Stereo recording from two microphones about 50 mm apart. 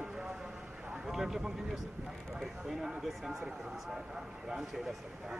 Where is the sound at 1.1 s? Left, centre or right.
Centre.